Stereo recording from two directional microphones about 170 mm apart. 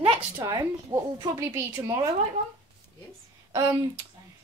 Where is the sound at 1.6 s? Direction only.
15° right (ahead or behind).